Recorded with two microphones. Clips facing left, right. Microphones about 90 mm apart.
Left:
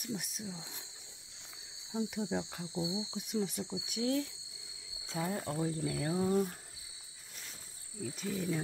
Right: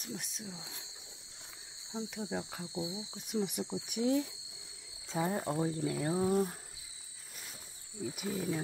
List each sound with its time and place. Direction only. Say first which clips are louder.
0.0 s speech: left 3 dB; 5° left (ahead or behind)
1.9 s cricket: left 4 dB; 5° left (ahead or behind)
2.3 s speech: left 1 dB; 5° right (ahead or behind)
2.8 s speech: left 4 dB; 15° left (ahead or behind)
3.3 s speech: right 3 dB; 10° right (ahead or behind)
5.7 s speech: right 2 dB; 5° right (ahead or behind)
8.0 s speech: right 1 dB; 10° right (ahead or behind)